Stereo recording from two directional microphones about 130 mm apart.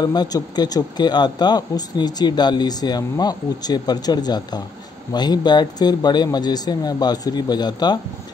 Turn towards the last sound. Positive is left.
turn(degrees=35)  # may be behind; listen again after turning